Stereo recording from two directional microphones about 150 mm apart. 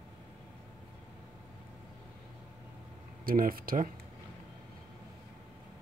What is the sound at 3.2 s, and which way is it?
Speech, 75° right (ahead or behind).